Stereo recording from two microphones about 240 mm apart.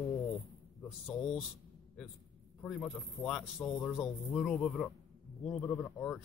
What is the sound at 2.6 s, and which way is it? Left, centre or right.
Speech, centre.